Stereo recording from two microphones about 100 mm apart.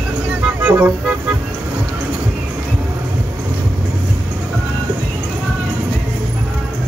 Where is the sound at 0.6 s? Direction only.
15° right (ahead or behind).